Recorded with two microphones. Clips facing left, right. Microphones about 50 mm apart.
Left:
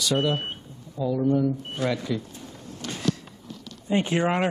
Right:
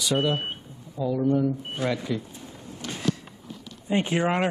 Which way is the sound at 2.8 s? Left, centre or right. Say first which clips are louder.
Even; centre.